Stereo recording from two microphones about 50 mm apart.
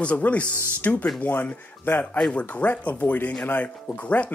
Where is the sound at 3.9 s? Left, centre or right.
Left.